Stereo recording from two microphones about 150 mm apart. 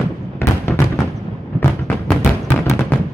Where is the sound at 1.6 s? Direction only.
15° left (ahead or behind).